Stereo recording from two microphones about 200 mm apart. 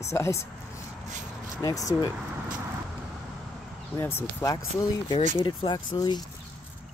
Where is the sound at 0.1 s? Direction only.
15° left (ahead or behind).